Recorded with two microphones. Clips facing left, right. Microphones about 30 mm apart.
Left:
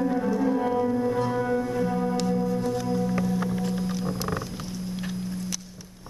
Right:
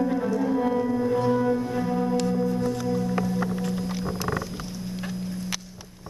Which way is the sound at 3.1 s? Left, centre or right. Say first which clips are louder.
Even; centre.